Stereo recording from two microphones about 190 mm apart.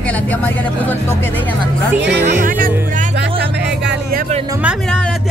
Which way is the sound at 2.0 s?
65° right (ahead or behind).